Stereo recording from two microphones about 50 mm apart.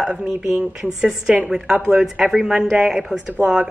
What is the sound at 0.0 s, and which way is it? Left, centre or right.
A woman's voice, centre.